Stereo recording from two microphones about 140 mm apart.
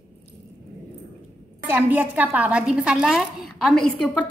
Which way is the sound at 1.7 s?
15° right (ahead or behind).